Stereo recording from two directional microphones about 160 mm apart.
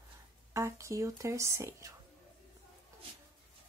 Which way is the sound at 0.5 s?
20° right (ahead or behind).